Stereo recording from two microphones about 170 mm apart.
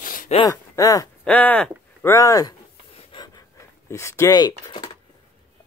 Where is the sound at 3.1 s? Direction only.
30° left (ahead or behind).